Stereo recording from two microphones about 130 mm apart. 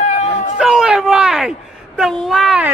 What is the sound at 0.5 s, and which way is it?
A man's voice, 5° right (ahead or behind).